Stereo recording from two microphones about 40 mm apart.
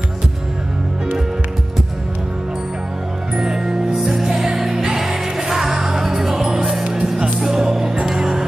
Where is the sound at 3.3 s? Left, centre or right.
Centre.